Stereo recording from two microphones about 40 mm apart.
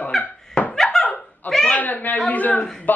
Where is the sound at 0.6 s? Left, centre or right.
Left.